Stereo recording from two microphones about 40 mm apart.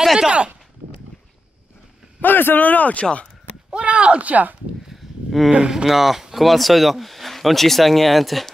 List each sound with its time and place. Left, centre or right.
0.0 s speech: centre
2.2 s speech: left
3.7 s speech: right
5.7 s speech: centre